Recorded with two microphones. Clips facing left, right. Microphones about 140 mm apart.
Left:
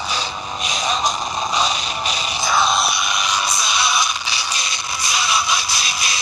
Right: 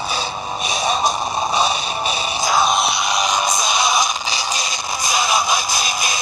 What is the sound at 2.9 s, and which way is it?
Music, 30° right (ahead or behind).